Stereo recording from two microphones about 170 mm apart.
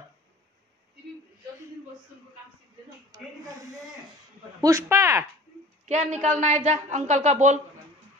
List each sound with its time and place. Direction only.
3.1 s speech: 25° right (ahead or behind)
4.6 s speech: 20° right (ahead or behind)
5.9 s a woman's voice: 45° right (ahead or behind)